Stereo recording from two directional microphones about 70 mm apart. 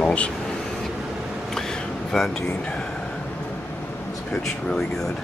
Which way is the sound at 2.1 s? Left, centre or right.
Centre.